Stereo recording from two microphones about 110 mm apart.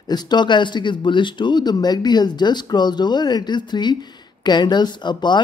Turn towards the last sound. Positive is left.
turn(degrees=45)  # may be behind; listen again after turning